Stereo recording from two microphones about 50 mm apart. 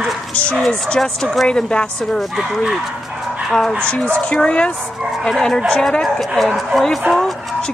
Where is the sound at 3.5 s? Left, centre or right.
Centre.